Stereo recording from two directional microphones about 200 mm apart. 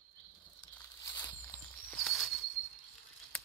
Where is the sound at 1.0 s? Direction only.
15° left (ahead or behind).